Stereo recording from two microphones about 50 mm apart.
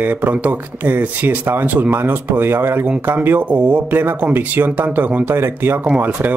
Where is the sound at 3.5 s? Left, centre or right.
Right.